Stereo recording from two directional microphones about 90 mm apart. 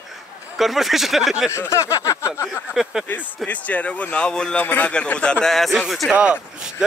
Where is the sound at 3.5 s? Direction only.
15° left (ahead or behind).